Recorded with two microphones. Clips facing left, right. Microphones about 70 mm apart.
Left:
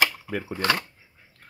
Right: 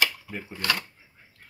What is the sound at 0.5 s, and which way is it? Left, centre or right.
Speech, left.